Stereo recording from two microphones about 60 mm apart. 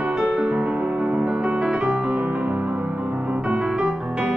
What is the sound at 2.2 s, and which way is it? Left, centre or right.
Music, right.